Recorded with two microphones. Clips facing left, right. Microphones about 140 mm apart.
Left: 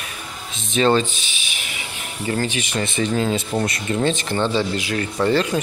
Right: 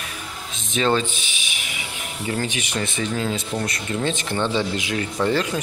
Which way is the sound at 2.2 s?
15° right (ahead or behind).